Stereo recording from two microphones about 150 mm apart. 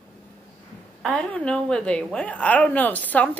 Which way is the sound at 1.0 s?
5° left (ahead or behind).